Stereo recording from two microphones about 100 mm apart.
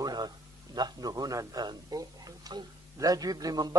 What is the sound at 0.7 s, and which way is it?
Speech, 40° right (ahead or behind).